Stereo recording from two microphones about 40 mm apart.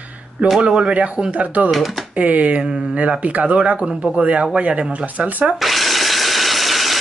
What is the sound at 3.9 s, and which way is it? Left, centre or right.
Speech, centre.